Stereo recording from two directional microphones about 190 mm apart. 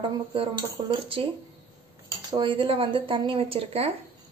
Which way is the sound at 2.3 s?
25° right (ahead or behind).